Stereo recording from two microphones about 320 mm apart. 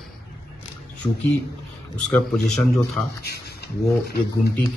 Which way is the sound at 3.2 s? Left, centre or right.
Left.